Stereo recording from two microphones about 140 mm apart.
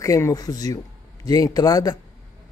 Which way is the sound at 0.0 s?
25° left (ahead or behind).